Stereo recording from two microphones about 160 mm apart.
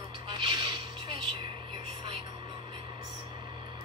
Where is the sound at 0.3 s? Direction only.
30° right (ahead or behind).